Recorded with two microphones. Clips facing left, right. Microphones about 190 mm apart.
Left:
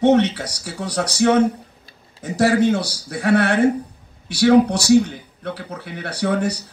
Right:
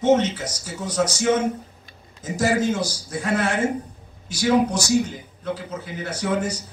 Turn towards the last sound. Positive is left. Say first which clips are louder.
# left 3 dB
turn(degrees=65)  # may be behind; listen again after turning